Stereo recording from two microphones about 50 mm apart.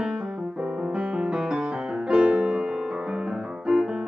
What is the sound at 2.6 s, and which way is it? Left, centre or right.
Piano, centre.